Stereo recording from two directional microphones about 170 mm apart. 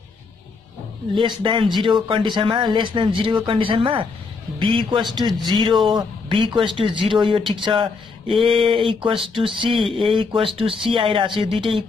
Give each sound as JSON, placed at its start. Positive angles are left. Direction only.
{"t": 1.1, "sound": "a man's voice", "side_deg": -30}